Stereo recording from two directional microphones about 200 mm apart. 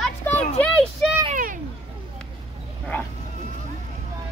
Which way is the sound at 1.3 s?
40° right (ahead or behind).